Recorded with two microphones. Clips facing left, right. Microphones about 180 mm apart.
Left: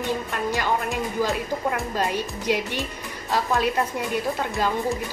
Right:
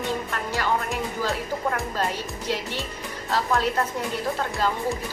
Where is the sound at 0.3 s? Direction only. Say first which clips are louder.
Left 3 dB; 15° left (ahead or behind).